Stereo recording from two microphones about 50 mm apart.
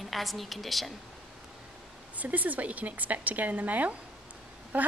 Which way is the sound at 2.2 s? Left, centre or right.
Right.